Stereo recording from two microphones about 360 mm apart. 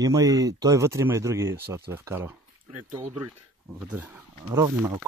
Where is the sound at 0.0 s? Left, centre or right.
Centre.